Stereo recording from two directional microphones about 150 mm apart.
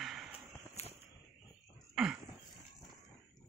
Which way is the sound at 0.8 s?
45° left (ahead or behind).